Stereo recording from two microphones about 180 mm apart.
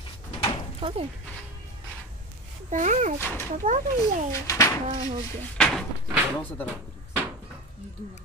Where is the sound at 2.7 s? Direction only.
40° right (ahead or behind).